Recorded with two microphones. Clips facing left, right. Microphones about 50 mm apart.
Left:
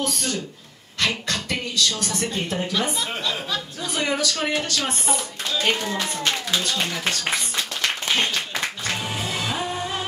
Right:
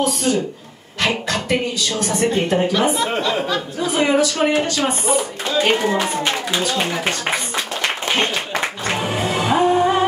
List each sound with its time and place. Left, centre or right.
0.0 s speech: centre
2.3 s a woman's voice: right
3.8 s speech: right
8.1 s music: right